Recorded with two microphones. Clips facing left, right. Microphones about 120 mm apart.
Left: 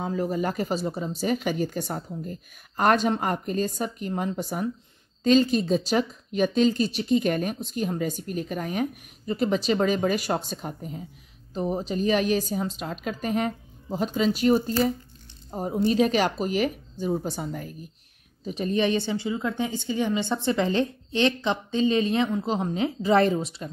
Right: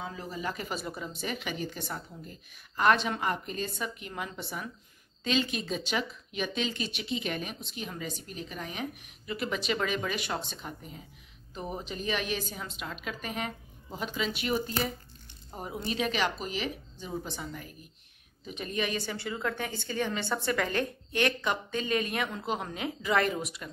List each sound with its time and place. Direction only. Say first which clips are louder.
0.0 s speech: left 10 dB; 45° left (ahead or behind); by 23.7 s 30° left (ahead or behind)